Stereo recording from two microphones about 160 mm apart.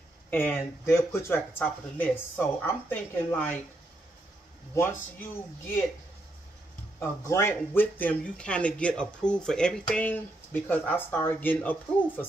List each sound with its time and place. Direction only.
0.3 s speech: 15° left (ahead or behind)
4.7 s speech: 15° left (ahead or behind)
7.0 s speech: 15° left (ahead or behind)